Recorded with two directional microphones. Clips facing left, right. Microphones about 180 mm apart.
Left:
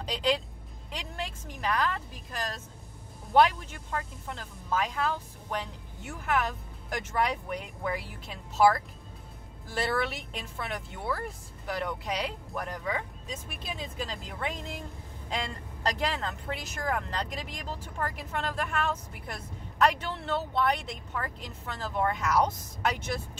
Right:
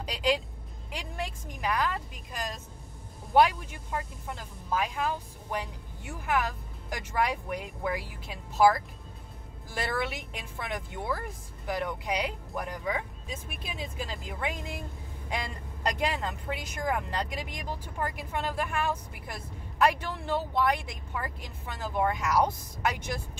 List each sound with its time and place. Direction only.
0.0 s speech: 10° right (ahead or behind)
10.6 s speech: 15° right (ahead or behind)
15.9 s speech: 10° right (ahead or behind)